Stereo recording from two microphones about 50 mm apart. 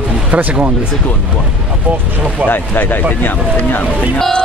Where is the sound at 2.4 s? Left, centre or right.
Left.